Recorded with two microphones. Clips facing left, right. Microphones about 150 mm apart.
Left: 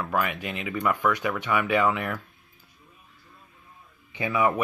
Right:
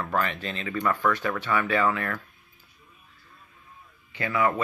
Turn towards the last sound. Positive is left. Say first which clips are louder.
# left 1 dB
turn(degrees=15)  # may be behind; listen again after turning